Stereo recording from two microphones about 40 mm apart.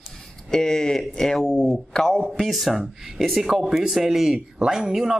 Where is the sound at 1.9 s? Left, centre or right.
Left.